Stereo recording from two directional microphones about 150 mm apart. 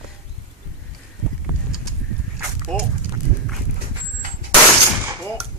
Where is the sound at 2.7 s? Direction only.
5° left (ahead or behind).